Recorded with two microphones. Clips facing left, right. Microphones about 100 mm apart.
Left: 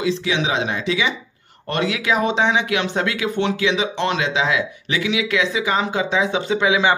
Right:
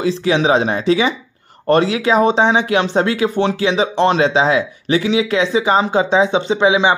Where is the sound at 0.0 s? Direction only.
40° right (ahead or behind).